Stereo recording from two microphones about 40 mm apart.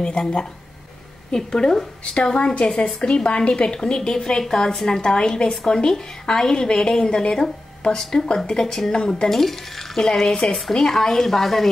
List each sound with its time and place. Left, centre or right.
0.0 s a woman's voice: left
9.3 s a woman's voice: centre